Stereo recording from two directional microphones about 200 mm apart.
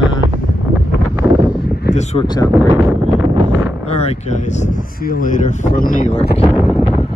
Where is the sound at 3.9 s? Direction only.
30° left (ahead or behind).